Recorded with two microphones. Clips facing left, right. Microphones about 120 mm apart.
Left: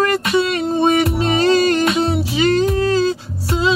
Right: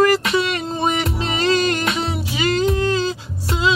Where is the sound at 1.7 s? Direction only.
30° left (ahead or behind).